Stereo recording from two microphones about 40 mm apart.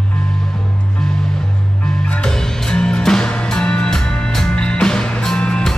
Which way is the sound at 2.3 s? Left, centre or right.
Centre.